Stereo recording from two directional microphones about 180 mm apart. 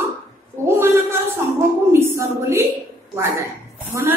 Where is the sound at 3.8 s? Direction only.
15° right (ahead or behind).